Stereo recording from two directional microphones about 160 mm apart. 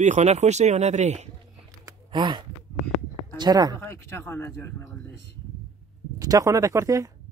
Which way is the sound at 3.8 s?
15° left (ahead or behind).